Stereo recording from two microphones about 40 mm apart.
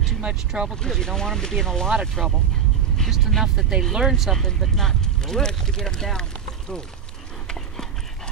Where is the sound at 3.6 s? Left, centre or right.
Centre.